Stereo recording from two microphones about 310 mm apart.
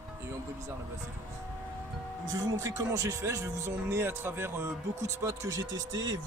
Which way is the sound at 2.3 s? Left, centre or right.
Centre.